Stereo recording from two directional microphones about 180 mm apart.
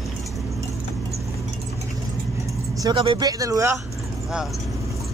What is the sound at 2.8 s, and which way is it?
Speech, 25° right (ahead or behind).